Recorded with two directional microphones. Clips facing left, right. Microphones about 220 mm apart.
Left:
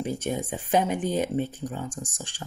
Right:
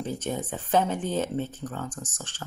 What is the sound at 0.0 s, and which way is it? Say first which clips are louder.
Speech: left 2 dB; 10° left (ahead or behind).